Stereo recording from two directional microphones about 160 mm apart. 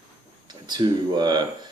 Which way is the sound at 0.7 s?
25° right (ahead or behind).